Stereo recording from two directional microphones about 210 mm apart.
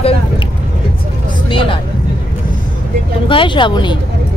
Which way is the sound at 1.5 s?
25° left (ahead or behind).